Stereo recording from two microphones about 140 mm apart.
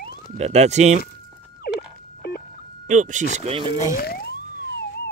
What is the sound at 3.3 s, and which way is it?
Speech, 45° right (ahead or behind).